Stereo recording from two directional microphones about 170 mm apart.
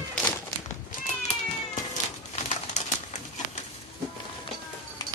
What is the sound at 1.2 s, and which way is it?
Cat, 45° left (ahead or behind).